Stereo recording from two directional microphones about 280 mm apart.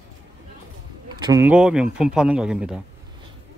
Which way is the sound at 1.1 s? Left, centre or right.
Centre.